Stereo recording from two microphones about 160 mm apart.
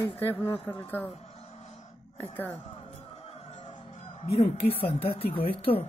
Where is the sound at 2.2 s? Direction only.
15° left (ahead or behind).